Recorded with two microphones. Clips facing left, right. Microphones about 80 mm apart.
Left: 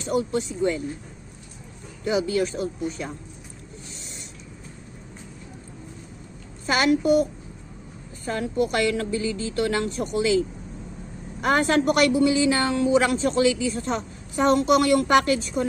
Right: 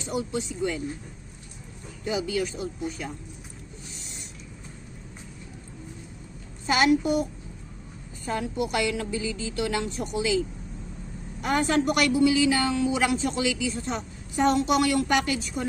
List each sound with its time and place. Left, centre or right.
0.0 s a woman's voice: left
2.0 s a woman's voice: left
6.6 s a woman's voice: left
8.3 s a woman's voice: left
11.4 s a woman's voice: left